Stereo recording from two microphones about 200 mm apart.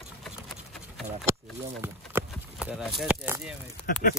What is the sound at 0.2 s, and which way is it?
Clip-clop, centre (ahead or behind).